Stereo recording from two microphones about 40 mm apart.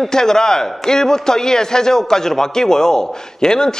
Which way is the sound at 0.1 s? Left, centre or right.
Centre.